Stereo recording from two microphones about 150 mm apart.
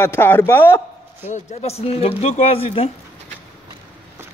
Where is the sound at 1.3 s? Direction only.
50° left (ahead or behind).